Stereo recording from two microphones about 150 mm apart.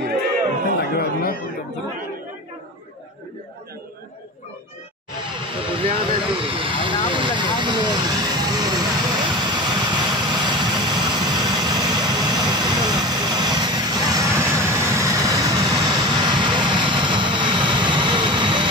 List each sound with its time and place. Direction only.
0.9 s chatter: 80° left
5.2 s speech: 35° right (ahead or behind)
7.1 s vehicle: 35° right (ahead or behind)